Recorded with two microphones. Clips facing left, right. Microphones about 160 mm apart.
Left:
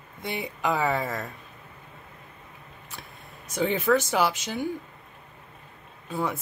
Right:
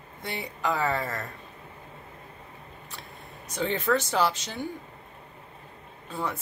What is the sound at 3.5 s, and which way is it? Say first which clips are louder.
Speech: left 3 dB; 10° left (ahead or behind).